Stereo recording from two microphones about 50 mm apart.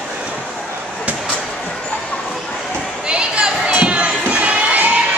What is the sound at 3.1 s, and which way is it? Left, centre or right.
Crowd, centre.